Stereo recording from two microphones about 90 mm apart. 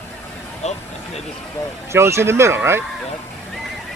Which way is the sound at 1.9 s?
30° right (ahead or behind).